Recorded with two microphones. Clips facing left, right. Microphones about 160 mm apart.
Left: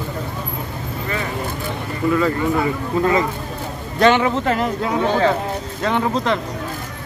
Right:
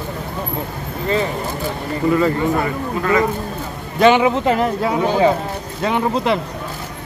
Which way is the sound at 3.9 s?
10° right (ahead or behind).